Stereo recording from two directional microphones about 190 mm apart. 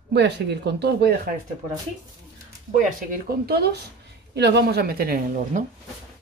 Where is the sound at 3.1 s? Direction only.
55° right (ahead or behind).